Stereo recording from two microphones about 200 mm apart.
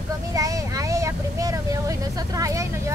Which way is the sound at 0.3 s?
15° right (ahead or behind).